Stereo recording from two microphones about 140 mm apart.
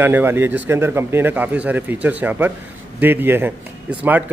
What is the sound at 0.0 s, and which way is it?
A man's voice, 15° right (ahead or behind).